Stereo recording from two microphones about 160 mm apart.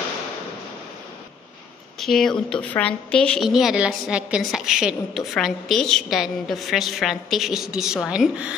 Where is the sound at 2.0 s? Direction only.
Centre (ahead or behind).